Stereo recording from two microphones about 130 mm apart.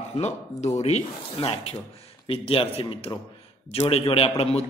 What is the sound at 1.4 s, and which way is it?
A man's voice, 45° left (ahead or behind).